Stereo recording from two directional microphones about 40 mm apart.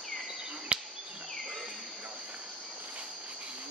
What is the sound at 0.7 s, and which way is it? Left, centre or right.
Insect, right.